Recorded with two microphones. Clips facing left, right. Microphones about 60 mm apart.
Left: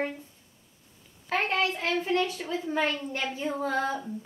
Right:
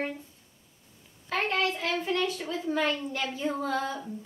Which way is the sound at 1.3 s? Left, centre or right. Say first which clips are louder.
Left 1 dB; left.